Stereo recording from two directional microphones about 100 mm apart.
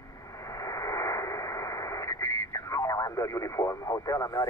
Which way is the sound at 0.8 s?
35° left (ahead or behind).